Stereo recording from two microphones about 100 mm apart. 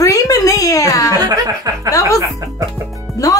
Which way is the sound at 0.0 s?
35° left (ahead or behind).